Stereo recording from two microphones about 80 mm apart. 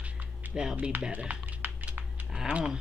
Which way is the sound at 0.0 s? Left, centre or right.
Centre.